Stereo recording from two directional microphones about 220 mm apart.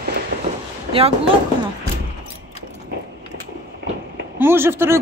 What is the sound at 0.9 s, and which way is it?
Speech, 25° right (ahead or behind).